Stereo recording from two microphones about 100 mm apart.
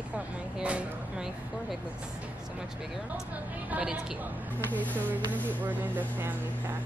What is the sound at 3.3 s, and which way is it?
A woman's voice, 15° right (ahead or behind).